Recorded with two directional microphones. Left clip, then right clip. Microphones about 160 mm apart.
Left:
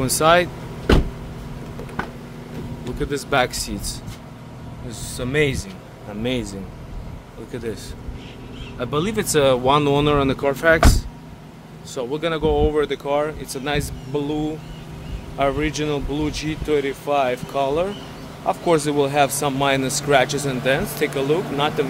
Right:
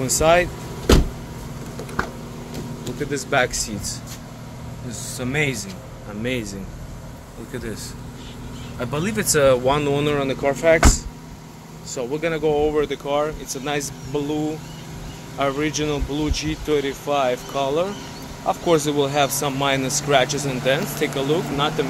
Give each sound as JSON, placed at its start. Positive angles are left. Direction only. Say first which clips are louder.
{"t": 0.0, "sound": "speech", "louder": "left 1 dB", "side_deg": 35}
{"t": 3.1, "sound": "speech", "louder": "even", "side_deg": 20}
{"t": 5.1, "sound": "speech", "louder": "left 3 dB", "side_deg": 15}
{"t": 7.5, "sound": "speech", "louder": "left 2 dB", "side_deg": 10}
{"t": 11.9, "sound": "speech", "louder": "even", "side_deg": 25}